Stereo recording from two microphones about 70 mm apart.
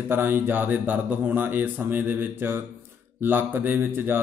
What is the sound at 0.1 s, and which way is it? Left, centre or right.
Mantra, right.